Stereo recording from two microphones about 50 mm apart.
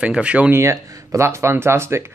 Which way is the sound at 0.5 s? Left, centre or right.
Right.